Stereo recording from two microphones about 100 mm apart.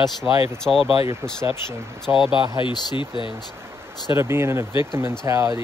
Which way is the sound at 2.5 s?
50° left (ahead or behind).